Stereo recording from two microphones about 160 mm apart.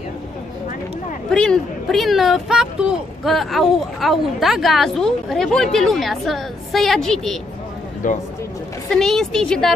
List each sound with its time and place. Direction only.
1.3 s speech: 5° left (ahead or behind)
8.0 s speech: 55° left (ahead or behind)
8.9 s speech: 5° left (ahead or behind)